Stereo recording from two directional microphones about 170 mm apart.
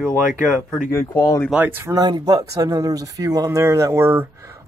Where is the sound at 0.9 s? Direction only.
20° left (ahead or behind).